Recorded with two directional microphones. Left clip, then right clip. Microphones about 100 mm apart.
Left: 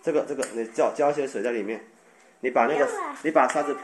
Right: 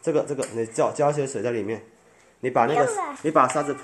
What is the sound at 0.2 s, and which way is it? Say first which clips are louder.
Speech: right 2 dB; 50° right (ahead or behind).